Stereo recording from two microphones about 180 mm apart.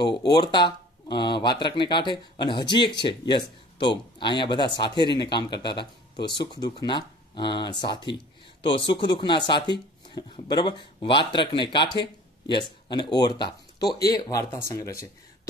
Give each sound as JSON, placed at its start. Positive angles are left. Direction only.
{"t": 0.3, "sound": "speech", "side_deg": 25}